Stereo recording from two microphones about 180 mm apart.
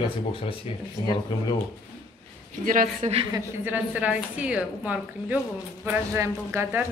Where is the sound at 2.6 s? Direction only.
45° right (ahead or behind).